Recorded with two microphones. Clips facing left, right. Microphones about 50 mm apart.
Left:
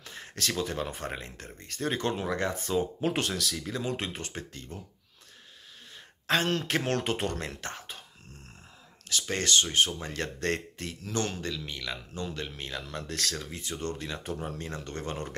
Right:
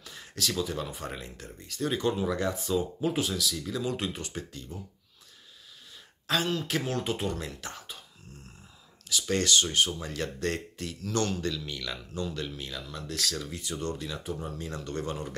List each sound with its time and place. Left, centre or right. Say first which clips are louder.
0.0 s speech: even; left
3.0 s speech: even; left
3.5 s speech: right 1 dB; left
6.4 s speech: left 1 dB; left
9.2 s speech: right 1 dB; left
10.9 s speech: right 2 dB; left
12.8 s speech: left 2 dB; left
13.3 s speech: right 1 dB; left
14.4 s speech: left 1 dB; left
14.7 s speech: right 2 dB; left